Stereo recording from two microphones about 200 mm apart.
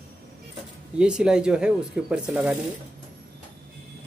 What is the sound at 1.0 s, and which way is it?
Speech, 5° right (ahead or behind).